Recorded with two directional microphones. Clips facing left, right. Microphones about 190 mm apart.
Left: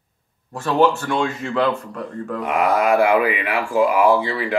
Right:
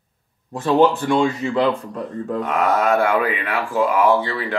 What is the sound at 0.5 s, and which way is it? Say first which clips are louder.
Speech: right 2 dB; 20° right (ahead or behind).